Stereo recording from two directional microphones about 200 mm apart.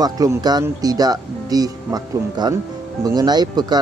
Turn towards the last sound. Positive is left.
turn(degrees=-20)  # may be behind; listen again after turning